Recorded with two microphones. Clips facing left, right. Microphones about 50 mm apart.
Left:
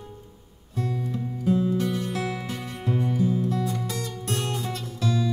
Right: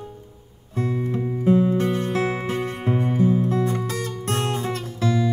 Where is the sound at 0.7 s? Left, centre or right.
Right.